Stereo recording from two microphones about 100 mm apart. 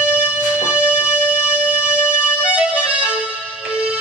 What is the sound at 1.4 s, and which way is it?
Music, 15° right (ahead or behind).